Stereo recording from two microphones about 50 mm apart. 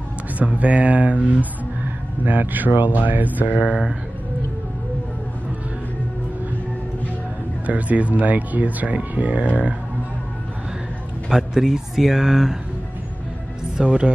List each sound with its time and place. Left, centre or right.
0.4 s speech: right
7.6 s speech: right
11.2 s speech: centre
13.7 s speech: right